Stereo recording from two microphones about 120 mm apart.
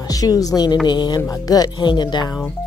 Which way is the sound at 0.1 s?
30° left (ahead or behind).